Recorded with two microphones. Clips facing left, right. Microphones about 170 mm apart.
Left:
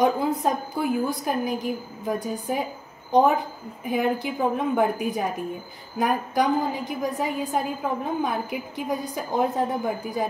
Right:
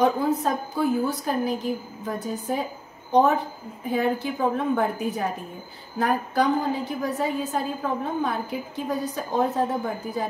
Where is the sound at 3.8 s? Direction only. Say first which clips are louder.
Even; 15° left (ahead or behind).